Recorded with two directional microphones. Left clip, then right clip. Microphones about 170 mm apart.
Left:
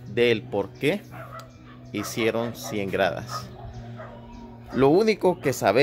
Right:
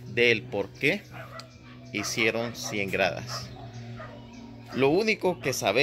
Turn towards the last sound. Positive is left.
turn(degrees=35)  # may be behind; listen again after turning